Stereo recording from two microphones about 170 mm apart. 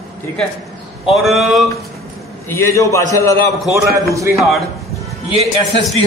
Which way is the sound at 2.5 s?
15° left (ahead or behind).